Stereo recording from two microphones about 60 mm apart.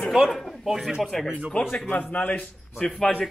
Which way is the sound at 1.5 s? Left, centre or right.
Left.